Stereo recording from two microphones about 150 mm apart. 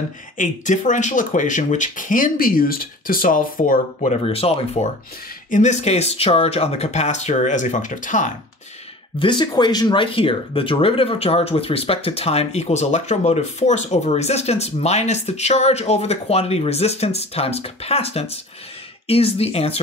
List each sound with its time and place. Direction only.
0.4 s speech: 55° left (ahead or behind); by 4.6 s 40° left (ahead or behind)
5.5 s speech: 50° left (ahead or behind)
9.2 s speech: 30° left (ahead or behind)